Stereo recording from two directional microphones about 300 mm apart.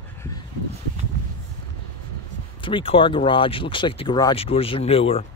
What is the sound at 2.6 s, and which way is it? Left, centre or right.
Speech, centre.